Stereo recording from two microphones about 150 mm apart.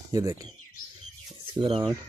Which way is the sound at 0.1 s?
25° right (ahead or behind).